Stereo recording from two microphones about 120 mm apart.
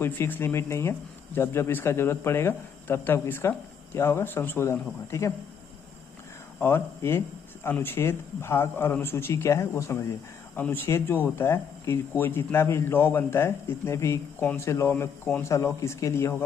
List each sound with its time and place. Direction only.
0.0 s speech: 20° left (ahead or behind)
6.6 s speech: 20° left (ahead or behind)